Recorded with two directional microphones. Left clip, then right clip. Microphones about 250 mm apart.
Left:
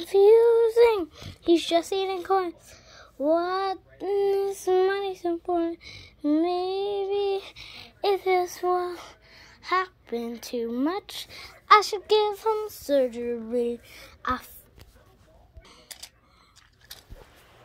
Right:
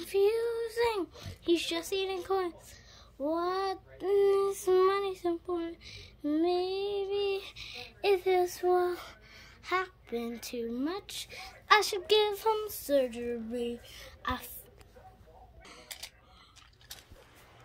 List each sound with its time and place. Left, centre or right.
0.0 s a child's voice: centre
5.5 s child singing: centre
15.9 s a sound: left